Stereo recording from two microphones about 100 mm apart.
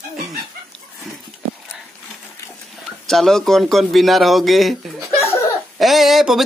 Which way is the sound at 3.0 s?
5° left (ahead or behind).